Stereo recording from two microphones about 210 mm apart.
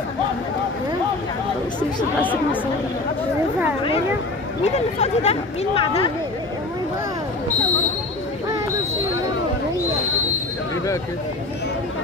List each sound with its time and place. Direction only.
4.7 s speech: 30° left (ahead or behind)